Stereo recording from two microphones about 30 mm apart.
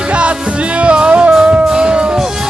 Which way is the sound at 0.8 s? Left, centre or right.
Right.